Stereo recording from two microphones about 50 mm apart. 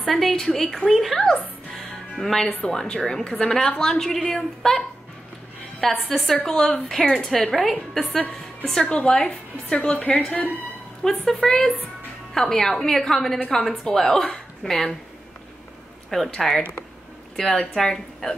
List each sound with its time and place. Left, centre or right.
0.0 s a woman's voice: centre
1.9 s music: centre
2.6 s a woman's voice: centre
8.6 s a woman's voice: centre; by 10.5 s left
11.1 s a woman's voice: centre
16.3 s a woman's voice: centre